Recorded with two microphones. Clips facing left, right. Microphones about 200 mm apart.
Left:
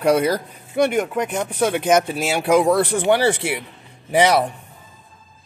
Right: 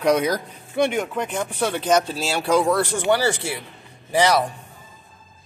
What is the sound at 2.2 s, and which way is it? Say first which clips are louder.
Speech: left 3 dB; 15° left (ahead or behind).